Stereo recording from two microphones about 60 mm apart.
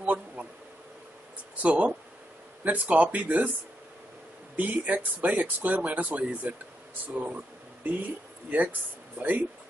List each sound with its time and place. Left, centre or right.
0.0 s a sound: right
1.6 s speech: right
4.6 s speech: right